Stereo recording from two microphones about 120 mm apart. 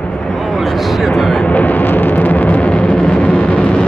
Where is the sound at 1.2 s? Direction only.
Centre (ahead or behind).